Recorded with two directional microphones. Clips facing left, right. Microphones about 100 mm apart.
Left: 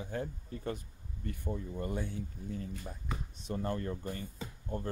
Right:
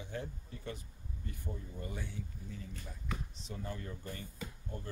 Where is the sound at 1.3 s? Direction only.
55° left (ahead or behind).